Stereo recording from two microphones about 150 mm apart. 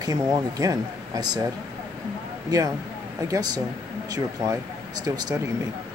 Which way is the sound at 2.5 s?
25° right (ahead or behind).